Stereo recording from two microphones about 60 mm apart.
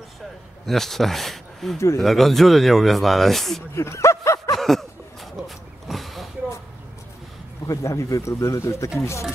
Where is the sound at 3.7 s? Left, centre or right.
Left.